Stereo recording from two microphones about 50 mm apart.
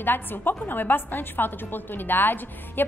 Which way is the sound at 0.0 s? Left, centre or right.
Left.